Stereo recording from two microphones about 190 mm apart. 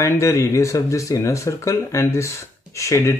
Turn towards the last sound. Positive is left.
turn(degrees=15)  # may be behind; listen again after turning